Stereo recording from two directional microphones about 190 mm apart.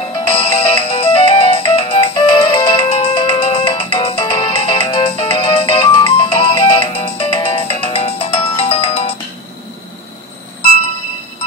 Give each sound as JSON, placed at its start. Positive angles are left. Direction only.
{"t": 0.1, "sound": "music", "side_deg": 30}